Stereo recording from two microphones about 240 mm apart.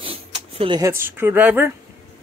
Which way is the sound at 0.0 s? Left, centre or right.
Right.